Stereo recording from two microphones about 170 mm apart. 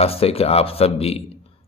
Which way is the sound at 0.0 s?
35° left (ahead or behind).